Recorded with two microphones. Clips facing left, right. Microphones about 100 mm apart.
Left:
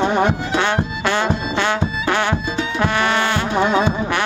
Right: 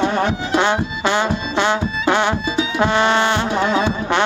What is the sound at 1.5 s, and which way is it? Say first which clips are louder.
Music: right 1 dB; 20° right (ahead or behind).